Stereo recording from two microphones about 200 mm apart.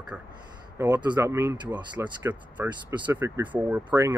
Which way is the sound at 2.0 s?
10° right (ahead or behind).